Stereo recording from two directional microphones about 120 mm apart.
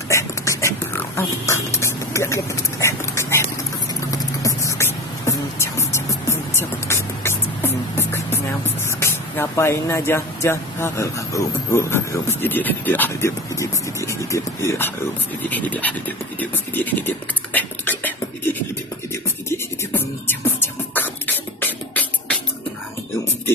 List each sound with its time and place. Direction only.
0.1 s a sound: 25° left (ahead or behind)
4.1 s beatboxing: 30° left (ahead or behind)
15.5 s dog: 15° left (ahead or behind)
19.5 s music: 20° left (ahead or behind)